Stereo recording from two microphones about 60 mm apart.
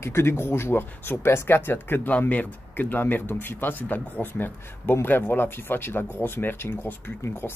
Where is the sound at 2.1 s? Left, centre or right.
Left.